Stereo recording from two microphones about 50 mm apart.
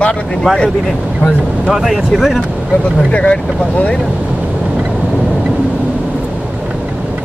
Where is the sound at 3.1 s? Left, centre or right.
Left.